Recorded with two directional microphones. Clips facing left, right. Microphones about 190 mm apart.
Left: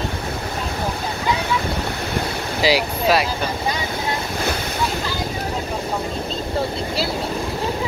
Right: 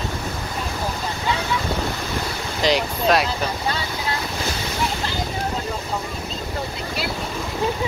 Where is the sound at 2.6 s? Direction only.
5° left (ahead or behind).